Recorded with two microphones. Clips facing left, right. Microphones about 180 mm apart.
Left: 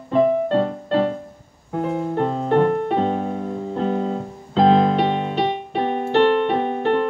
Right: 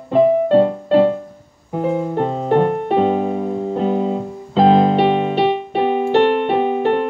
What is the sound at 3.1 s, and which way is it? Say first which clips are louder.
Music: right 5 dB; 75° right (ahead or behind).